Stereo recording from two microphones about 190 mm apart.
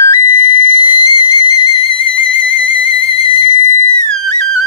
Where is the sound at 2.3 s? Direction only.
30° left (ahead or behind).